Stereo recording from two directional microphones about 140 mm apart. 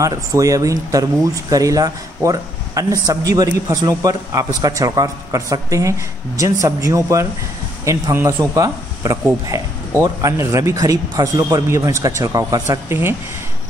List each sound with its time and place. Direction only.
0.0 s speech: 25° right (ahead or behind)